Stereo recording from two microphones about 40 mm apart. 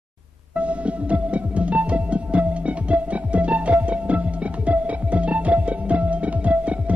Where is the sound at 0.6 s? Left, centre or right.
Right.